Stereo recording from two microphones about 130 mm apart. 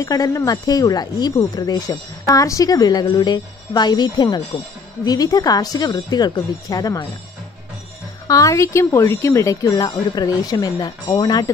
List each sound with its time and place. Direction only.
0.0 s speech: 25° left (ahead or behind)
8.3 s speech: 25° left (ahead or behind)